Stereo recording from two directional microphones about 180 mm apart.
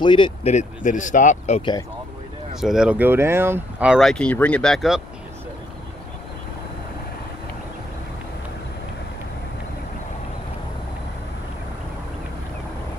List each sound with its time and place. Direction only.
0.0 s speech: 25° left (ahead or behind)
1.6 s speech: 25° left (ahead or behind)
2.6 s speech: 5° right (ahead or behind)